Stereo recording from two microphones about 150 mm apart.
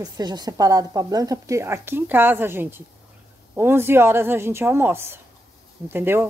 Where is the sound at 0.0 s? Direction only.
25° right (ahead or behind).